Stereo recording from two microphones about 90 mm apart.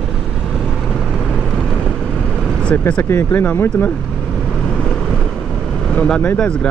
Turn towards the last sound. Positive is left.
turn(degrees=10)  # may be behind; listen again after turning